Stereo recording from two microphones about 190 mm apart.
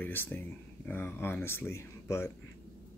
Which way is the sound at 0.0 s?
10° left (ahead or behind).